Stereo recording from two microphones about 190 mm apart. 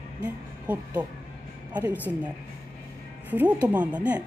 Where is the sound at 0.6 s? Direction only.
10° right (ahead or behind).